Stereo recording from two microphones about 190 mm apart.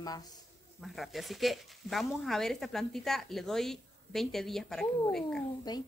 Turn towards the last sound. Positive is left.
turn(degrees=20)  # may be behind; listen again after turning